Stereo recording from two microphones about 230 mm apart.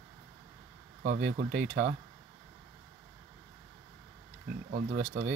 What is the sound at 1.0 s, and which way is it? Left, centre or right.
Speech, right.